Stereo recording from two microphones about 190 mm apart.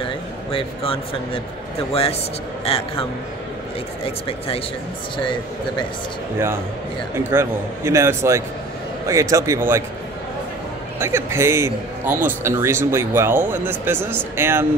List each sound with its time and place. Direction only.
0.0 s speech: 30° left (ahead or behind)
2.6 s a man's voice: 30° left (ahead or behind)
7.2 s a man's voice: 15° right (ahead or behind)
11.0 s a man's voice: 15° right (ahead or behind)